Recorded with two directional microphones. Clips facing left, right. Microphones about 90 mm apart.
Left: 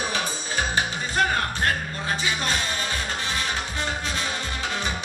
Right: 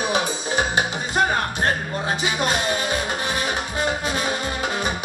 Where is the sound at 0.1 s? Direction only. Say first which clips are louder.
Right 6 dB; 20° right (ahead or behind).